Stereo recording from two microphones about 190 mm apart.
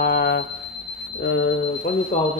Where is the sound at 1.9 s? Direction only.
55° left (ahead or behind).